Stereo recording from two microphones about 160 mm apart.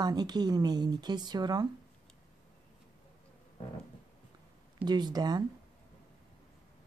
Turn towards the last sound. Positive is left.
turn(degrees=-25)  # may be behind; listen again after turning